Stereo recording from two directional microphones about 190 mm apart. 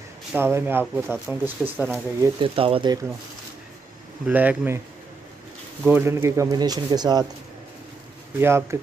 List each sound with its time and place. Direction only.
0.3 s speech: 10° right (ahead or behind)
2.4 s speech: 30° right (ahead or behind)
4.3 s speech: 10° right (ahead or behind)
5.9 s speech: 10° right (ahead or behind)
8.4 s speech: 15° right (ahead or behind)